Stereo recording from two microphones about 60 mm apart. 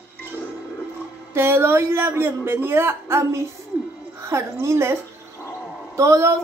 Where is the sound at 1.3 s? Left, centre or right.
Right.